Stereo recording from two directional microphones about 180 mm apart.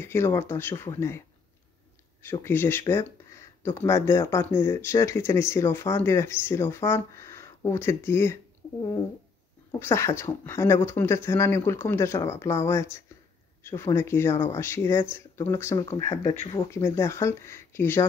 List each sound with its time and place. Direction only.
0.0 s speech: 15° left (ahead or behind)
2.4 s speech: 10° left (ahead or behind)
9.7 s speech: 15° left (ahead or behind)
16.3 s speech: 30° left (ahead or behind)
16.7 s speech: 15° left (ahead or behind)